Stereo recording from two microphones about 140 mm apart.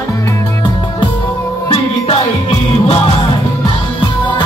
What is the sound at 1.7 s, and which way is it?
Music, 45° left (ahead or behind).